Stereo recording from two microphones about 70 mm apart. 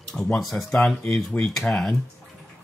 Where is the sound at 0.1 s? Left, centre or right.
Centre.